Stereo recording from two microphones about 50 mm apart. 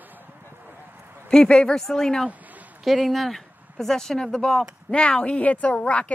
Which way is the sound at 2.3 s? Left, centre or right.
Right.